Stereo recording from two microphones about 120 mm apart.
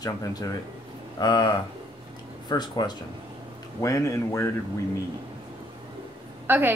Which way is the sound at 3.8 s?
25° left (ahead or behind).